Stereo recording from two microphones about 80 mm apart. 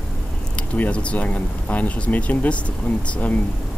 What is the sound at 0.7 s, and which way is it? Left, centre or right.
Speech, centre.